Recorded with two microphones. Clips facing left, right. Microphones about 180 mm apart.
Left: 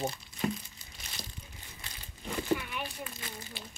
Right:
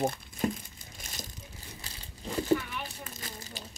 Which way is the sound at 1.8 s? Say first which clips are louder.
Right 1 dB; 30° right (ahead or behind).